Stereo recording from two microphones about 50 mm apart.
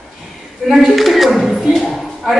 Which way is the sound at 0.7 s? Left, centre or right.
Centre.